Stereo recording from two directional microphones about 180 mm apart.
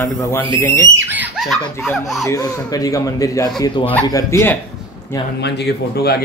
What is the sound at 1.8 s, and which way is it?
Speech, centre (ahead or behind).